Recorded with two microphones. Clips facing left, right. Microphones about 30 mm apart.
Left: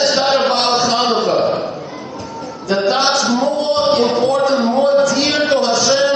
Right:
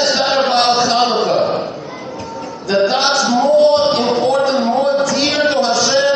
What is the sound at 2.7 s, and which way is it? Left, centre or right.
Music, centre.